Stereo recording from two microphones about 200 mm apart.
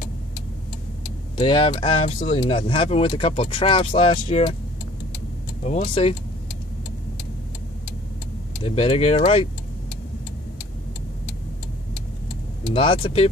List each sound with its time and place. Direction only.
1.3 s speech: 25° left (ahead or behind)
5.6 s speech: 30° left (ahead or behind)
8.6 s speech: 25° left (ahead or behind)
12.7 s speech: 25° left (ahead or behind)